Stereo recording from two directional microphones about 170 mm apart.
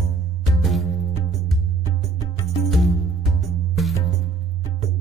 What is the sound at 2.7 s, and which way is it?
Music, centre (ahead or behind).